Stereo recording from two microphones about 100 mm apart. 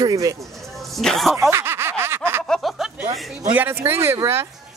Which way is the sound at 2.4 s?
5° left (ahead or behind).